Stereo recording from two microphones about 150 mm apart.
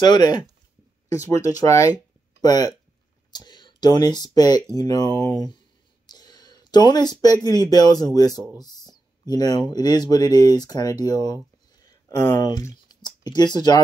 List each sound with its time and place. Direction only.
0.0 s speech: 30° left (ahead or behind)
6.0 s a sound: 25° left (ahead or behind)
7.4 s speech: 25° left (ahead or behind)